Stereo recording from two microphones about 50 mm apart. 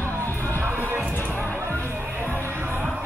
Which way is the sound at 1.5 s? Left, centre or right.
Right.